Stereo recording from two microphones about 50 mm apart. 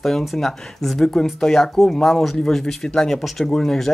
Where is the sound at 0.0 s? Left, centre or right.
Centre.